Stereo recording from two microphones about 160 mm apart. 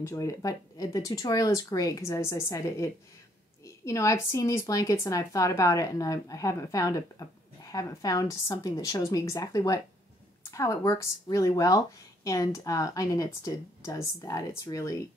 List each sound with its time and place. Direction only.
0.1 s a woman's voice: 20° left (ahead or behind)